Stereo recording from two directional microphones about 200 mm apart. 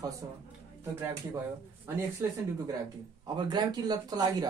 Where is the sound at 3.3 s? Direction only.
20° right (ahead or behind).